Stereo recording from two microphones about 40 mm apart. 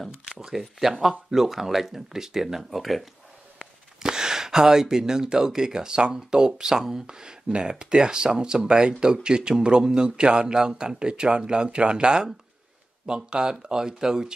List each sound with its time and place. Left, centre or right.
0.3 s a sound: centre
0.6 s speech: centre
4.0 s speech: centre